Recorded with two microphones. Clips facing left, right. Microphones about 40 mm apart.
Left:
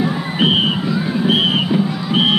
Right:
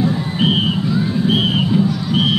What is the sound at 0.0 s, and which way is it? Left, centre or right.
Music, left.